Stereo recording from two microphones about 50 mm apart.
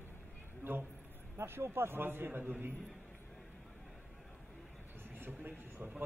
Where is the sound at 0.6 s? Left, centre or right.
Right.